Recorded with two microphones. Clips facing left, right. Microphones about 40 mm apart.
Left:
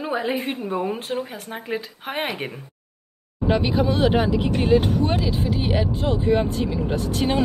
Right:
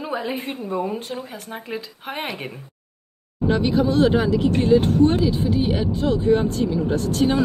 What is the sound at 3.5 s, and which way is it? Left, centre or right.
Speech, left.